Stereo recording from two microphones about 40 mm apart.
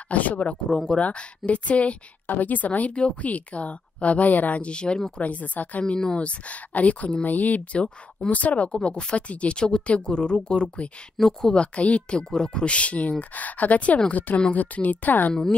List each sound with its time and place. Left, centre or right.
0.1 s speech: left
0.7 s speech: centre
0.9 s speech: left
2.2 s a woman's voice: left
4.6 s speech: left
5.2 s speech: left
5.9 s speech: left
8.6 s speech: left
11.1 s speech: centre
11.5 s speech: left
12.2 s speech: centre
12.6 s a woman's voice: left